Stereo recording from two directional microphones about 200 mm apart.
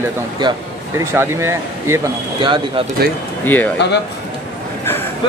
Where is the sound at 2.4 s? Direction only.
25° right (ahead or behind).